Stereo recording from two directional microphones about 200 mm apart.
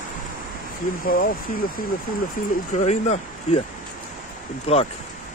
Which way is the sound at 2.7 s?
35° left (ahead or behind).